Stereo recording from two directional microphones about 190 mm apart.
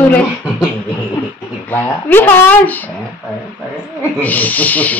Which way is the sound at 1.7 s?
10° left (ahead or behind).